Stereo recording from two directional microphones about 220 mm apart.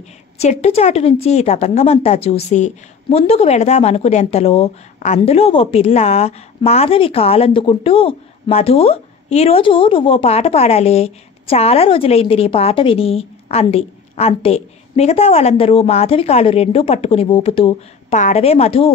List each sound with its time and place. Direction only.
0.4 s a woman's voice: 30° left (ahead or behind)